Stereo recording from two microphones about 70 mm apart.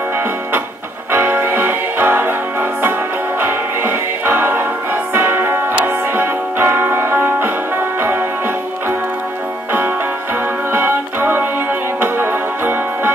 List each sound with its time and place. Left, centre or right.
1.1 s music: right
3.3 s music: right
10.7 s music: right